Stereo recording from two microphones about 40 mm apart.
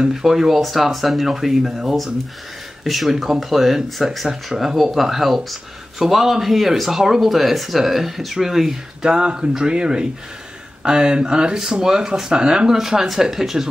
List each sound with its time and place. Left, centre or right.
0.1 s speech: centre
9.1 s speech: right